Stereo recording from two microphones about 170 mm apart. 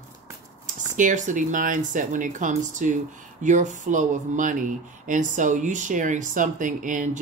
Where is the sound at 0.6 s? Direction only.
50° right (ahead or behind).